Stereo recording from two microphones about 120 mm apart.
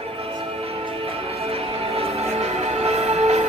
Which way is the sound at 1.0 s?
55° right (ahead or behind).